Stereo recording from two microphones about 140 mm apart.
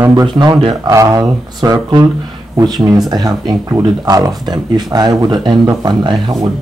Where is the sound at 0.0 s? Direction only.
30° right (ahead or behind).